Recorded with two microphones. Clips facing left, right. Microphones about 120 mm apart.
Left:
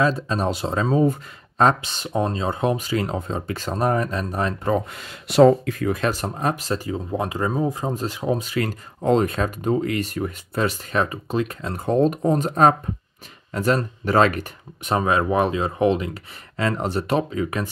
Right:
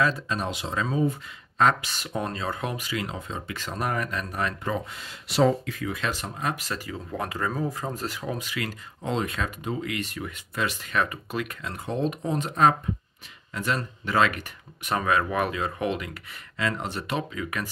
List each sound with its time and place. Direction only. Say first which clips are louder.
0.0 s speech: left 5 dB; 30° left (ahead or behind)
4.7 s speech: left 7 dB; 55° left (ahead or behind); by 14.4 s 40° left (ahead or behind)
14.8 s speech: left 4 dB; 25° left (ahead or behind)